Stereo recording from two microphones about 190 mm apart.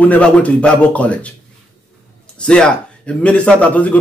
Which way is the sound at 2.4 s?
5° left (ahead or behind).